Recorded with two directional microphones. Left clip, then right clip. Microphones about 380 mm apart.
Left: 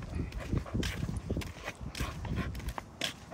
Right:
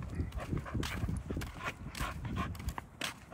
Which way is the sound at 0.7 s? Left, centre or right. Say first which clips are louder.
Left 2 dB; centre.